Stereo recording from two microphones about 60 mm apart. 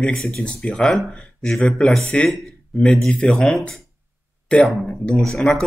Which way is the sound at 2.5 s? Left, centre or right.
Centre.